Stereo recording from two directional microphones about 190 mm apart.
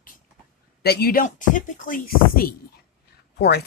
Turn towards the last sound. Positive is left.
turn(degrees=60)  # may be behind; listen again after turning